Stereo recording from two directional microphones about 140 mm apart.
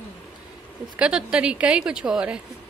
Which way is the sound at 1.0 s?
5° right (ahead or behind).